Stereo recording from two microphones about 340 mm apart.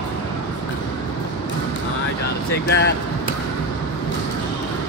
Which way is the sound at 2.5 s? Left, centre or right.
Left.